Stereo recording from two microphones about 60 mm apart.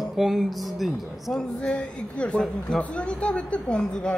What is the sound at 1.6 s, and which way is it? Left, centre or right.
A woman's voice, centre.